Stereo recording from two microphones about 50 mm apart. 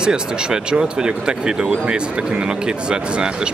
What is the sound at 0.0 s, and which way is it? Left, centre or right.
Speech, centre.